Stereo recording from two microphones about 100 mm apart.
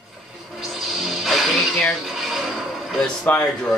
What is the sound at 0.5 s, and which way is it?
Music, centre (ahead or behind).